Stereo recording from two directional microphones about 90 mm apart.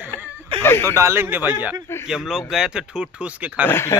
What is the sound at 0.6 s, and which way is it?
Speech, 25° left (ahead or behind).